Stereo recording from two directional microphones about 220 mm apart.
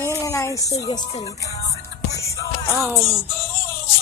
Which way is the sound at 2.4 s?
15° left (ahead or behind).